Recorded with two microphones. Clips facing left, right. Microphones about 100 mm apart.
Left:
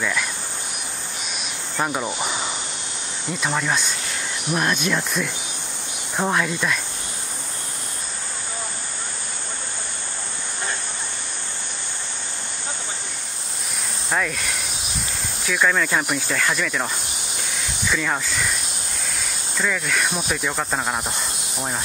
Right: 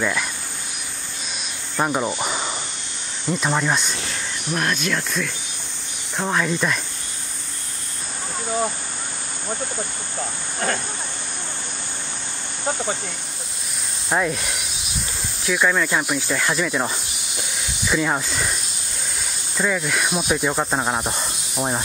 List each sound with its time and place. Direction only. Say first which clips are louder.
1.8 s speech: right 3 dB; 5° right (ahead or behind)
4.5 s speech: left 1 dB; 5° left (ahead or behind)
14.1 s speech: right 3 dB; 20° right (ahead or behind)
15.4 s speech: right 1 dB; 10° right (ahead or behind)
19.5 s speech: right 2 dB; 15° right (ahead or behind)